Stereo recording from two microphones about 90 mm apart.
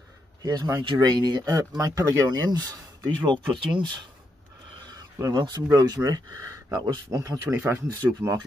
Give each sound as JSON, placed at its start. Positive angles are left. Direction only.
{"t": 0.4, "sound": "speech", "side_deg": -45}
{"t": 1.4, "sound": "speech", "side_deg": -35}
{"t": 3.3, "sound": "speech", "side_deg": -60}
{"t": 5.2, "sound": "speech", "side_deg": -45}
{"t": 7.5, "sound": "speech", "side_deg": -30}